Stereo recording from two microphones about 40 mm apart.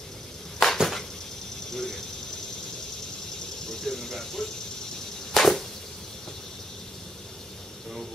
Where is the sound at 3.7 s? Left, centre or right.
Centre.